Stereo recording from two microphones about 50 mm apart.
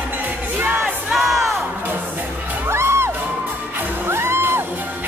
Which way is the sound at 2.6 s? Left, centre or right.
Right.